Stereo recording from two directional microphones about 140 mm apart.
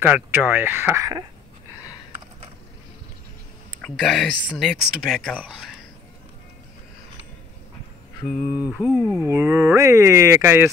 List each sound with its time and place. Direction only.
0.0 s speech: 15° right (ahead or behind)
3.8 s speech: 5° left (ahead or behind)
8.5 s speech: 10° right (ahead or behind)